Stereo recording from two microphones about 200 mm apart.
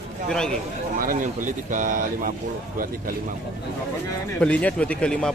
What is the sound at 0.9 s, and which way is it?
Speech, 40° right (ahead or behind).